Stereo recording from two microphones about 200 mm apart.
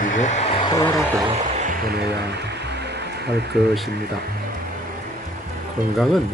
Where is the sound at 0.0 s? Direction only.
40° left (ahead or behind).